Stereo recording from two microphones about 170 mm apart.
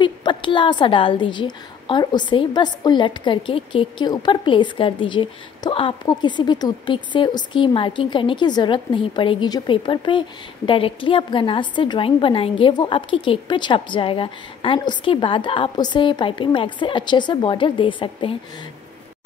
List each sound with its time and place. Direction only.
0.0 s a woman's voice: 30° left (ahead or behind)